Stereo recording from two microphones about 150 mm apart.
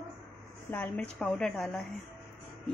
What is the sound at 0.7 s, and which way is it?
Speech, 10° left (ahead or behind).